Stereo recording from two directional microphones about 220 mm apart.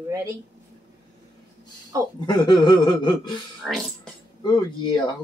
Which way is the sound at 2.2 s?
20° left (ahead or behind).